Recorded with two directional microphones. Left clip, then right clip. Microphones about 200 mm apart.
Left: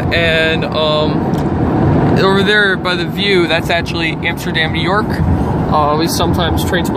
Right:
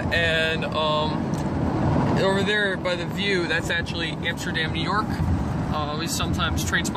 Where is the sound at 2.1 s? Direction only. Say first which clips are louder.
Left 11 dB; 15° left (ahead or behind).